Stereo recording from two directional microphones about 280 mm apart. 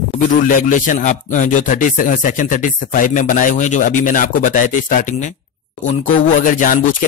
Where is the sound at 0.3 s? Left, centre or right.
Left.